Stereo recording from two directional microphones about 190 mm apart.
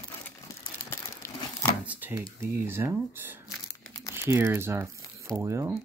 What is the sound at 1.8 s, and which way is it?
Speech, 10° right (ahead or behind).